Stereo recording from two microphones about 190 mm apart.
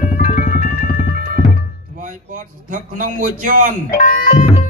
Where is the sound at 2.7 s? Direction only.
45° right (ahead or behind).